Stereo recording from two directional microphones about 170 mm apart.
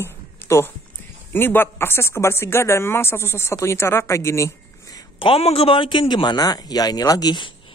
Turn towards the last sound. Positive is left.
turn(degrees=25)  # may be behind; listen again after turning